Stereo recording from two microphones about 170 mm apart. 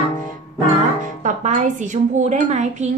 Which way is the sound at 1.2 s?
45° right (ahead or behind).